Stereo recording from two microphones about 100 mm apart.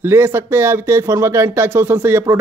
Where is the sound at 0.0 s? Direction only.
25° right (ahead or behind).